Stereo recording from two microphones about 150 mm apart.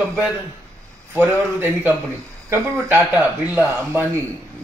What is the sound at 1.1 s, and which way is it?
Speech, 15° right (ahead or behind).